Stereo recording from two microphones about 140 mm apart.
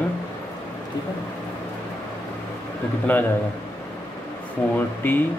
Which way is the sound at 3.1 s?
10° left (ahead or behind).